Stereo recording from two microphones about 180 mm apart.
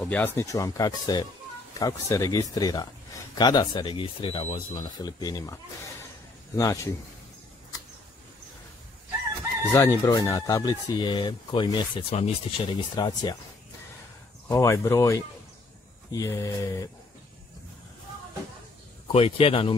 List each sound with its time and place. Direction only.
0.0 s speech: 10° left (ahead or behind)
9.7 s speech: 15° left (ahead or behind)
14.5 s speech: 20° left (ahead or behind)
19.1 s a man's voice: 30° left (ahead or behind)